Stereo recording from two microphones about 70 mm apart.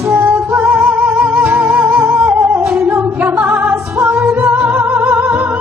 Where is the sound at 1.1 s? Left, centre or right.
Centre.